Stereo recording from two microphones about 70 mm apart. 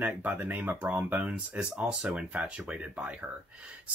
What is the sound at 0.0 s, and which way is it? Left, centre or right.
Speech, right.